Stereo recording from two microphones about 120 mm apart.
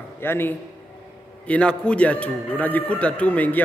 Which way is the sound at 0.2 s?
20° left (ahead or behind).